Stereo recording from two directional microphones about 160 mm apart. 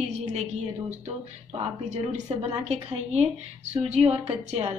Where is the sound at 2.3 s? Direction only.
40° right (ahead or behind).